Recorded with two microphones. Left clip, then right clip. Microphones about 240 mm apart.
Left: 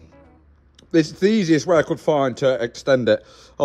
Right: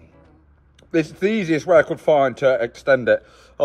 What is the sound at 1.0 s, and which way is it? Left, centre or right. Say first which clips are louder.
Speech: left 2 dB; left.